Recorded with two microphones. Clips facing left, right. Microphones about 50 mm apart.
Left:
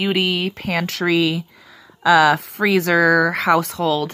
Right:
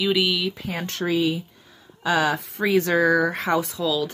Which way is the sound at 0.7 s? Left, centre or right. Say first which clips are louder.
Left 9 dB; left.